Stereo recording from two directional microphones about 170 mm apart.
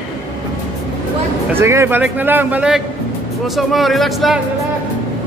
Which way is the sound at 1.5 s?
15° right (ahead or behind).